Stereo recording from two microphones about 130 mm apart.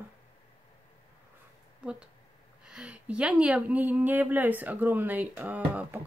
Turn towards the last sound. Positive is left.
turn(degrees=-15)  # may be behind; listen again after turning